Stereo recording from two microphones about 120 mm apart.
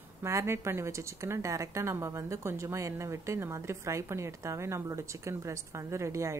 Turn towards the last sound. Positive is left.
turn(degrees=-25)  # may be behind; listen again after turning